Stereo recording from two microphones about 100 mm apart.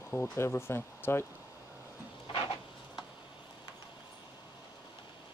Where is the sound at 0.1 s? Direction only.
25° left (ahead or behind).